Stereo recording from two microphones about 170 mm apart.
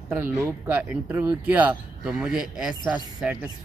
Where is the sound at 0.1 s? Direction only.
10° right (ahead or behind).